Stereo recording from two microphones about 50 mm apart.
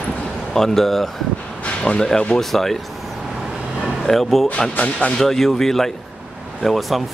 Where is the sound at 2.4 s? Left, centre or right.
Centre.